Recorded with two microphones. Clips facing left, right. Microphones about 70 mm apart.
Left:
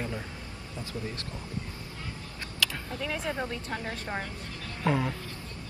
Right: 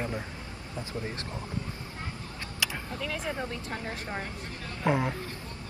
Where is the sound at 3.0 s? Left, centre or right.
Centre.